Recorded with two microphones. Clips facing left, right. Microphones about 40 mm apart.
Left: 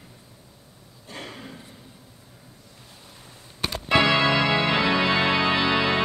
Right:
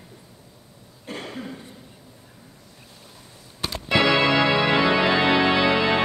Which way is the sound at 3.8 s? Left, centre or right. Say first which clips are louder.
Even; centre.